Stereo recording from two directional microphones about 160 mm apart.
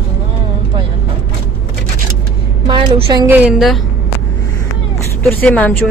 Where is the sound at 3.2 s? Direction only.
10° right (ahead or behind).